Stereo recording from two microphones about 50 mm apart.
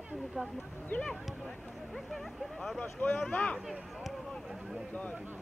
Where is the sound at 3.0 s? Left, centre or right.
Left.